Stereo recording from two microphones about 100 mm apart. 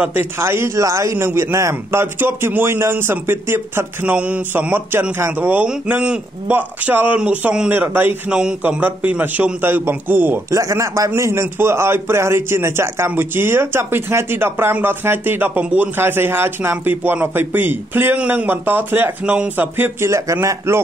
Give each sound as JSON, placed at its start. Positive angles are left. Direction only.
{"t": 0.0, "sound": "a man's voice", "side_deg": -20}
{"t": 8.3, "sound": "a man's voice", "side_deg": -10}
{"t": 10.6, "sound": "a man's voice", "side_deg": -30}